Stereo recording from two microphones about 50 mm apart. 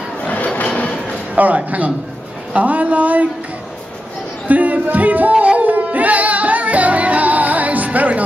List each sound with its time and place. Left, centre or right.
0.6 s a sound: left
1.3 s speech: right
4.5 s music: right